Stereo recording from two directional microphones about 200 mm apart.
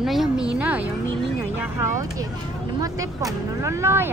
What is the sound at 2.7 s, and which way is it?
A woman's voice, 15° right (ahead or behind).